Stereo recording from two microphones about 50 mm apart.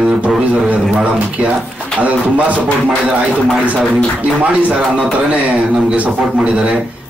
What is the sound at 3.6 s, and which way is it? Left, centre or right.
A man's voice, right.